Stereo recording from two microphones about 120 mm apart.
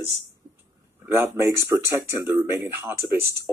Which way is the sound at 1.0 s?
20° right (ahead or behind).